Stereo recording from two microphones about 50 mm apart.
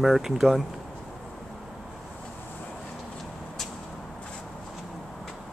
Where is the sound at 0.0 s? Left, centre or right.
Centre.